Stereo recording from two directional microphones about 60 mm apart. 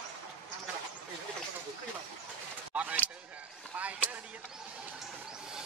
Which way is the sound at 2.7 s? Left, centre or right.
Right.